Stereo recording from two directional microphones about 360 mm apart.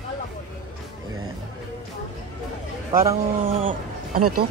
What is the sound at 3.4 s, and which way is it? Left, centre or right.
Speech, right.